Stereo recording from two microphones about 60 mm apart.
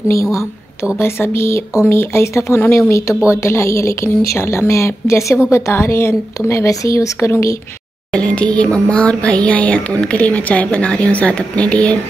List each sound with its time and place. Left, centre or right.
0.1 s a woman's voice: left
0.9 s a woman's voice: left
7.2 s a woman's voice: left
8.1 s a woman's voice: centre